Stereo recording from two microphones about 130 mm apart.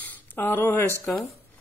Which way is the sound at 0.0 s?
15° left (ahead or behind).